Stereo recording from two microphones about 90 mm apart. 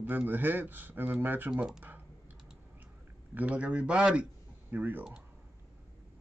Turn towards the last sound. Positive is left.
turn(degrees=-20)  # may be behind; listen again after turning